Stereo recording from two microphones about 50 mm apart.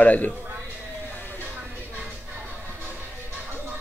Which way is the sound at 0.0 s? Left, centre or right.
Left.